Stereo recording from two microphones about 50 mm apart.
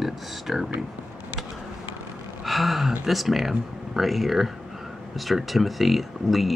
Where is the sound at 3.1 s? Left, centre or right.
Centre.